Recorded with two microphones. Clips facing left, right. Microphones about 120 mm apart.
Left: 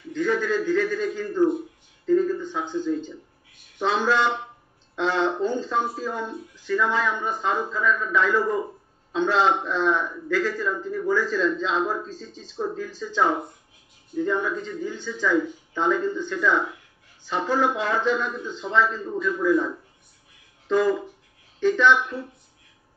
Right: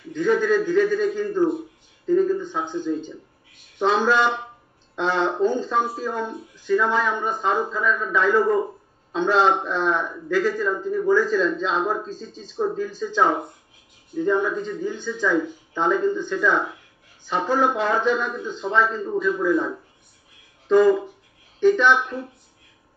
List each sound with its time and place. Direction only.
0.1 s a man's voice: 15° right (ahead or behind)